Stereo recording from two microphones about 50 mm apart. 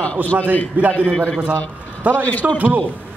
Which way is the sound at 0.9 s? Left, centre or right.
Left.